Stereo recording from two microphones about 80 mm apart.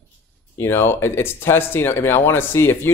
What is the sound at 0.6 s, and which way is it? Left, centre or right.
Speech, left.